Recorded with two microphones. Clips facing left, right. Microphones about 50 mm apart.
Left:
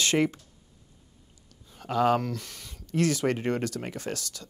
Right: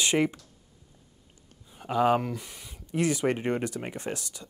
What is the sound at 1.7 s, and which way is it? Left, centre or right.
Speech, centre.